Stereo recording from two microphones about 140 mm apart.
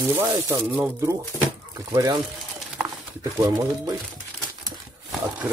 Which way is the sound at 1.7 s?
25° right (ahead or behind).